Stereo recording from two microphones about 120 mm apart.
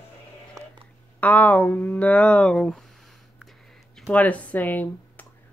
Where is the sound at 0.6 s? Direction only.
25° right (ahead or behind).